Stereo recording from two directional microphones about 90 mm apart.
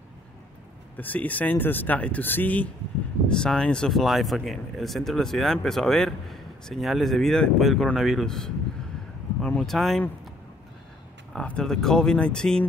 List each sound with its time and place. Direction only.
0.9 s speech: 20° left (ahead or behind)
3.3 s speech: 5° left (ahead or behind)
9.6 s speech: centre (ahead or behind)
11.3 s speech: 10° left (ahead or behind)